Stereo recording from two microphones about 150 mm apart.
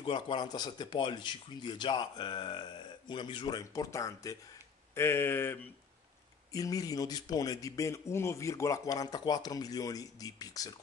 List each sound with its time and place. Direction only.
0.0 s speech: 30° left (ahead or behind)